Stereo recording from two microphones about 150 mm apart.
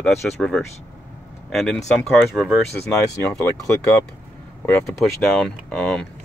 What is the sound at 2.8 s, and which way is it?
Speech, 15° left (ahead or behind).